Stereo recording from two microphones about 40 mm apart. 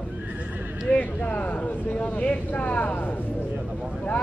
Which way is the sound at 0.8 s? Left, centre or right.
Left.